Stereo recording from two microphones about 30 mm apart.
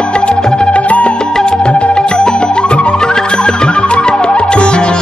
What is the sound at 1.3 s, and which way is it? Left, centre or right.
Music, left.